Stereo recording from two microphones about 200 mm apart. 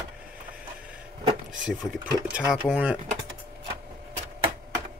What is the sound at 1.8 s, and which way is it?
Speech, centre (ahead or behind).